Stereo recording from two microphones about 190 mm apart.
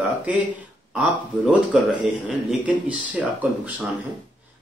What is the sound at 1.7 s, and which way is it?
A man's voice, 5° right (ahead or behind).